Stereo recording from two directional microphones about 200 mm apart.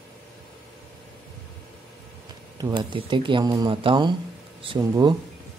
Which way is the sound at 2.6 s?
20° right (ahead or behind).